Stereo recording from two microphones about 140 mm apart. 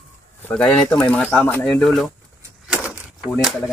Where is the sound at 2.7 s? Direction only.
5° right (ahead or behind).